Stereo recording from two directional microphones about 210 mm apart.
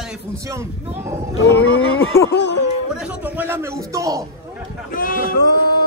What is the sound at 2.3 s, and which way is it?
Speech, 55° left (ahead or behind).